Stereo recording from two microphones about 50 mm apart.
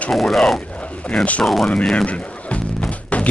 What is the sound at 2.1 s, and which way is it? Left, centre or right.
Music, left.